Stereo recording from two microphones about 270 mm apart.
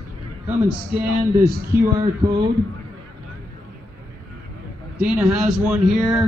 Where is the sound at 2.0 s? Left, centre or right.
Centre.